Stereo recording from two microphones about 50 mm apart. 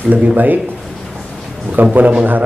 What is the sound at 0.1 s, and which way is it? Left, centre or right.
Speech, right.